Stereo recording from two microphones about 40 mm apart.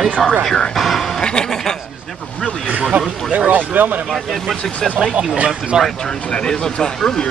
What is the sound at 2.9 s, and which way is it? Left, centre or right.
Speech, right.